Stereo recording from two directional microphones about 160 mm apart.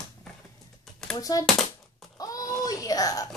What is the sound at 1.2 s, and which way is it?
Speech, 20° left (ahead or behind).